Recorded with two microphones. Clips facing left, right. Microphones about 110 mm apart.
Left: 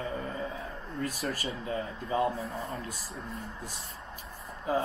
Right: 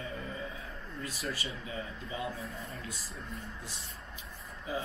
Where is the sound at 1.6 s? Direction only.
50° left (ahead or behind).